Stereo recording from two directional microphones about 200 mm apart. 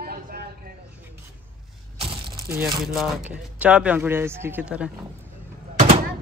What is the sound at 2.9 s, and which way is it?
Speech, 5° right (ahead or behind).